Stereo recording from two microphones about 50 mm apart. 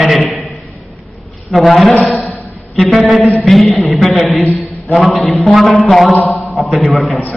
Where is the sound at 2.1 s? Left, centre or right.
Left.